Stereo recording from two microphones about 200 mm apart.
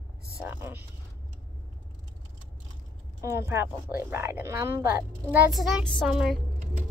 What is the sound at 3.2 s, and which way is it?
Child singing, 15° right (ahead or behind).